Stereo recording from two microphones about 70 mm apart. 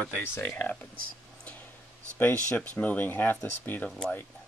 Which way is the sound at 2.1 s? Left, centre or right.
Left.